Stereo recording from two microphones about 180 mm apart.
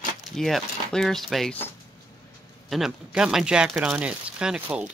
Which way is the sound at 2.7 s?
5° right (ahead or behind).